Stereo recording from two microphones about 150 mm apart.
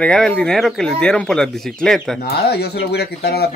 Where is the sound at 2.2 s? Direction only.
90° left.